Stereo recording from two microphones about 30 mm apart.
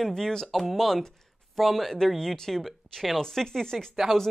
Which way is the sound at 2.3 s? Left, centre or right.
Centre.